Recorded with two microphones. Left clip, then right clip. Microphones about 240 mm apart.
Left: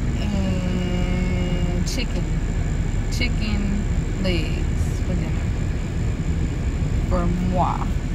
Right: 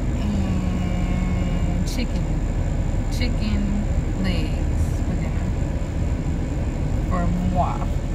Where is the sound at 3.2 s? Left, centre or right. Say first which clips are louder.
Left 3 dB; centre.